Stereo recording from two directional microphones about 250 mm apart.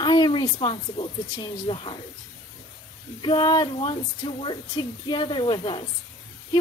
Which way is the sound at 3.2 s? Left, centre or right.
Centre.